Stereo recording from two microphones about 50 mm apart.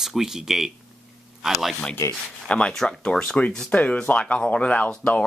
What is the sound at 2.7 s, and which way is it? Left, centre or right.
Speech, centre.